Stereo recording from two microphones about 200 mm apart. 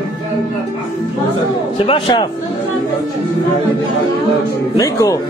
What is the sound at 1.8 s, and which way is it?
Speech, 25° left (ahead or behind).